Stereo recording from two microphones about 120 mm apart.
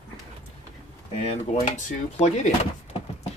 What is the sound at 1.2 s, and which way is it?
Speech, 70° left (ahead or behind).